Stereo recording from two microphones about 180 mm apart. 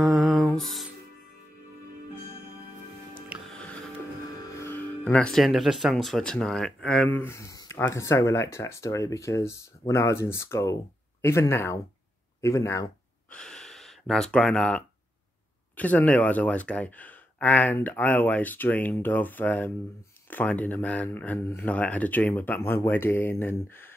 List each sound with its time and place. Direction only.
0.0 s music: centre (ahead or behind)
3.4 s music: 5° left (ahead or behind)
4.6 s speech: 10° left (ahead or behind)
13.3 s speech: 5° left (ahead or behind)